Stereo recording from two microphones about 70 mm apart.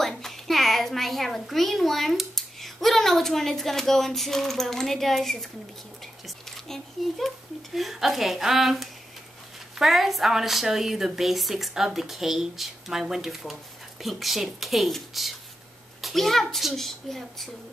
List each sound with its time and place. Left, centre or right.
0.2 s a child's voice: centre